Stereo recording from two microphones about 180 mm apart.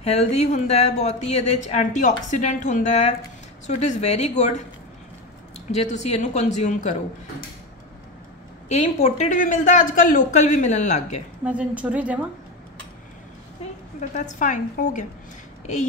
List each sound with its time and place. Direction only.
0.0 s speech: 35° left (ahead or behind)
5.7 s speech: 40° left (ahead or behind)
8.6 s speech: 40° left (ahead or behind)
11.4 s a woman's voice: 5° right (ahead or behind)
14.1 s a woman's voice: 45° left (ahead or behind)